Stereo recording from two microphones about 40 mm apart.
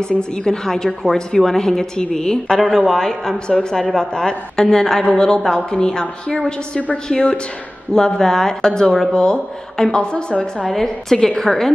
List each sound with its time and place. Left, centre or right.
0.0 s a woman's voice: left
2.6 s a woman's voice: centre
4.0 s a woman's voice: centre
5.4 s a woman's voice: centre
5.7 s a woman's voice: centre
10.6 s a woman's voice: centre